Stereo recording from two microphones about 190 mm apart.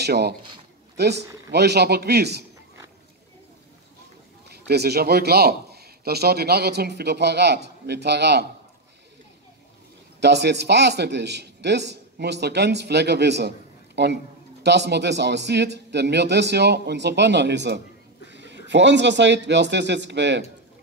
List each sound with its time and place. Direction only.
0.0 s a man's voice: 60° right (ahead or behind)
4.5 s a man's voice: 60° right (ahead or behind)
10.2 s a man's voice: 60° right (ahead or behind)